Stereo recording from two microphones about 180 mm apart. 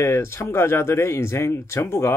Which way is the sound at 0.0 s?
15° left (ahead or behind).